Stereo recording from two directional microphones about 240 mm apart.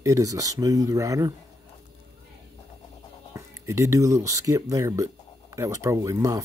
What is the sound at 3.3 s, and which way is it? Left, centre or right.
Speech, centre.